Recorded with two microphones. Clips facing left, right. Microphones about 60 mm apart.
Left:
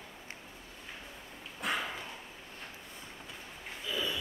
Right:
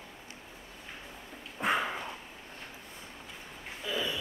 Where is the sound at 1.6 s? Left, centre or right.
Right.